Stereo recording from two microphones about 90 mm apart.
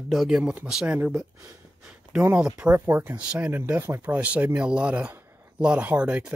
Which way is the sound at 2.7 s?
25° right (ahead or behind).